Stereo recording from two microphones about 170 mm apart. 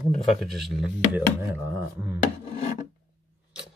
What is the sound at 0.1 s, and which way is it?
Speech, centre (ahead or behind).